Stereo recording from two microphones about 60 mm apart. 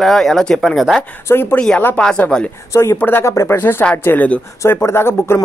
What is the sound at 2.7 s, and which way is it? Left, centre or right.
Speech, left.